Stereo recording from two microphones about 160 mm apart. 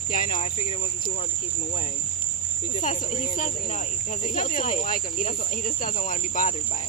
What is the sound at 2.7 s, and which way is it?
Speech, 50° left (ahead or behind).